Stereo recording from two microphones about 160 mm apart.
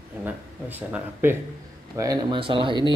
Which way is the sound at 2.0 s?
20° right (ahead or behind).